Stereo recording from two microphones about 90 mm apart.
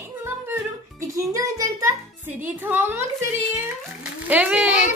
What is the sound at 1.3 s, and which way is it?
Speech, 35° right (ahead or behind).